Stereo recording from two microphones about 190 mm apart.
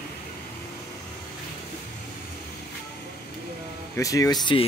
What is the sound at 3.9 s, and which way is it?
Speech, 15° left (ahead or behind).